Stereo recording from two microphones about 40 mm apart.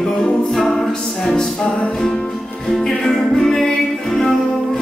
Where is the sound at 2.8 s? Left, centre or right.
Centre.